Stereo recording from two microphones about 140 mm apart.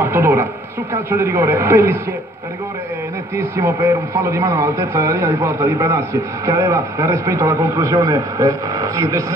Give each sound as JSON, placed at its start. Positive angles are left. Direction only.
{"t": 0.0, "sound": "a woman's voice", "side_deg": -20}
{"t": 3.3, "sound": "speech", "side_deg": -20}